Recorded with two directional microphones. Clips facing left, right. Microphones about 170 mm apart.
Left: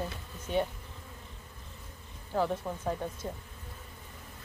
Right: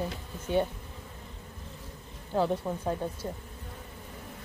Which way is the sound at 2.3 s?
20° right (ahead or behind).